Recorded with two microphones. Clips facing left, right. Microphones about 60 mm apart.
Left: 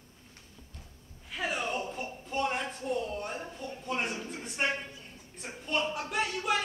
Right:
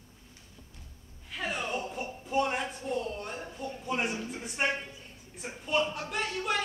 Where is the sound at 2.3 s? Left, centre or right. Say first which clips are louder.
Right 3 dB; centre.